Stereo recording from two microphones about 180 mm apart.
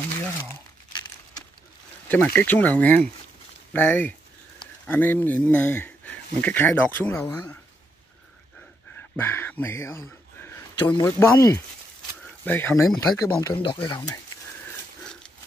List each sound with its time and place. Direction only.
2.0 s speech: 10° left (ahead or behind)
7.2 s speech: 20° left (ahead or behind)
9.1 s speech: 10° left (ahead or behind)
10.8 s speech: 25° left (ahead or behind)